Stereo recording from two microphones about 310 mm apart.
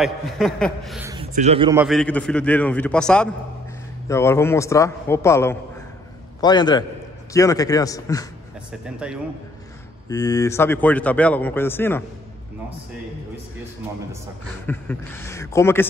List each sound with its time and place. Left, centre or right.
0.0 s a man's voice: centre
1.1 s a man's voice: centre
1.8 s a man's voice: centre
8.8 s a man's voice: centre
10.0 s a man's voice: centre
14.7 s a man's voice: centre